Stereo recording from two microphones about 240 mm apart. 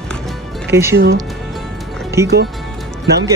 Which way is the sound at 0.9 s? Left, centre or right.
Right.